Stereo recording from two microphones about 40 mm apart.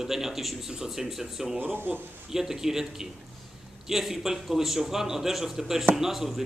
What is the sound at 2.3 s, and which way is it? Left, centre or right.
A man's voice, centre.